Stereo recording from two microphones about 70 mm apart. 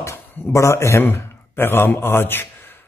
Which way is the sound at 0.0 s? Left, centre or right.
Left.